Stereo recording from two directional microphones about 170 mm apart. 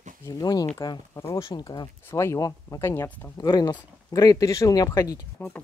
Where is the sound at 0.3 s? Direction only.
20° left (ahead or behind).